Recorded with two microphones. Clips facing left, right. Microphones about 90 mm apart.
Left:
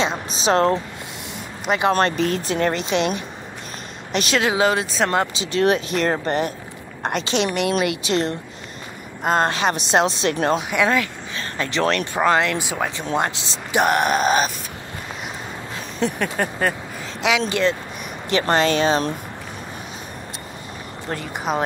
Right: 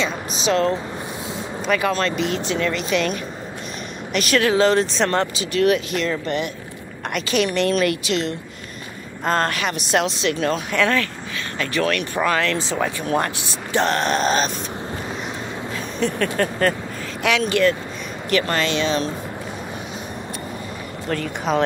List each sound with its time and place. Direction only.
0.0 s a woman's voice: 35° left (ahead or behind)
1.9 s a woman's voice: 40° left (ahead or behind); by 5.3 s 10° left (ahead or behind)
5.3 s a woman's voice: 25° left (ahead or behind)
7.5 s speech: 15° left (ahead or behind)
8.1 s a woman's voice: 35° left (ahead or behind)
9.2 s speech: 15° left (ahead or behind)
9.5 s a woman's voice: 30° left (ahead or behind)
10.7 s speech: 15° left (ahead or behind)
11.5 s speech: 25° left (ahead or behind); by 14.5 s 10° left (ahead or behind)
16.0 s a woman's voice: 15° left (ahead or behind); by 19.0 s 40° left (ahead or behind)
21.2 s speech: 10° left (ahead or behind)